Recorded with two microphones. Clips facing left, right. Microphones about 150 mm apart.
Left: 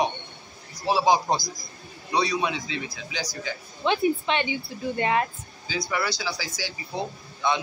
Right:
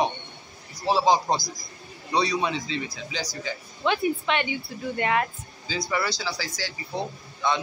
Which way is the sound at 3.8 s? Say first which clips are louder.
Left 1 dB; 25° left (ahead or behind).